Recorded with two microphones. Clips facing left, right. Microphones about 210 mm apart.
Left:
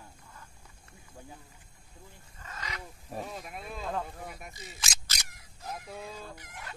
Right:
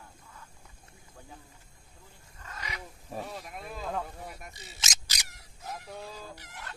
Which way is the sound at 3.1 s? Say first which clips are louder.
Even; centre (ahead or behind).